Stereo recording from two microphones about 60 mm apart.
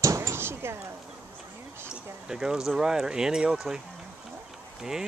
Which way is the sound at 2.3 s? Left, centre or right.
Centre.